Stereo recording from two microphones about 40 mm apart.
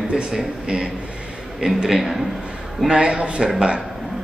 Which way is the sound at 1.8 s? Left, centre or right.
Centre.